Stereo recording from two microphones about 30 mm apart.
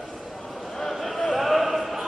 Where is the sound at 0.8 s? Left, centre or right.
Centre.